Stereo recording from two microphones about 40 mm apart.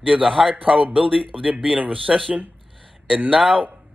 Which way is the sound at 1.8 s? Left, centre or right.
Right.